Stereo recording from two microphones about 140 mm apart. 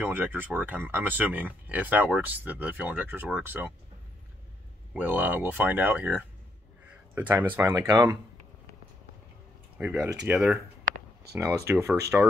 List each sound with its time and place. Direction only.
0.0 s speech: 15° right (ahead or behind)
4.9 s speech: 10° right (ahead or behind)
7.7 s speech: 25° right (ahead or behind)
9.8 s speech: 10° right (ahead or behind)
11.6 s speech: 20° right (ahead or behind)